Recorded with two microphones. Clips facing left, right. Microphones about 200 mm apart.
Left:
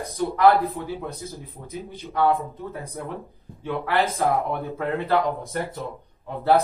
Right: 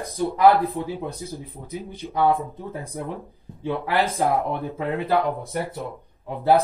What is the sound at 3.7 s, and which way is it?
A man's voice, 15° right (ahead or behind).